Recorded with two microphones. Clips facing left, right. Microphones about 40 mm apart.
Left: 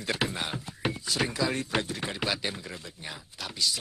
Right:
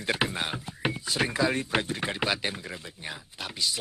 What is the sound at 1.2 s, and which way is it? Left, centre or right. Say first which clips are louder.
Speech: right 4 dB; right.